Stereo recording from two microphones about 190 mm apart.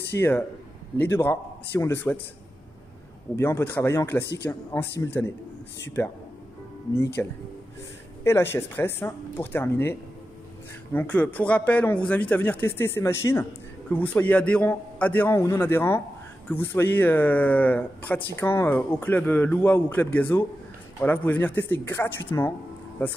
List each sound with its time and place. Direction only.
0.2 s speech: 10° left (ahead or behind)
3.3 s speech: 15° left (ahead or behind)
4.2 s speech: 60° left (ahead or behind)
4.7 s speech: 15° left (ahead or behind)
6.0 s speech: 15° left (ahead or behind)
7.2 s speech: 10° left (ahead or behind)